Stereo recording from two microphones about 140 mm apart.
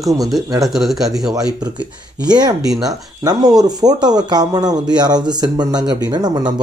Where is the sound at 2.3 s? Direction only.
30° right (ahead or behind).